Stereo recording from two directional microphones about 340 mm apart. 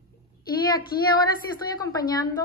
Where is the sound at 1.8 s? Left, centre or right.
Centre.